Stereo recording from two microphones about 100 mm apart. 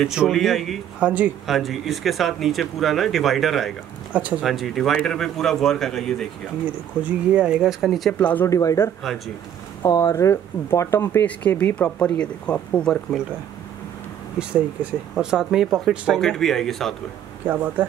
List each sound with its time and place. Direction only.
0.1 s speech: centre (ahead or behind)
0.9 s speech: 15° right (ahead or behind)
1.5 s speech: centre (ahead or behind)
4.1 s speech: 15° right (ahead or behind)
4.5 s speech: centre (ahead or behind)
6.6 s speech: 15° right (ahead or behind)
8.1 s speech: 15° left (ahead or behind)
8.5 s speech: 35° left (ahead or behind)
11.2 s speech: 15° left (ahead or behind)
14.5 s speech: 15° right (ahead or behind); by 16.9 s 5° left (ahead or behind)